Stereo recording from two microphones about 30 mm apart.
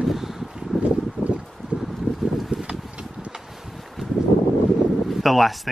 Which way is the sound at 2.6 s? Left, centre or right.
Right.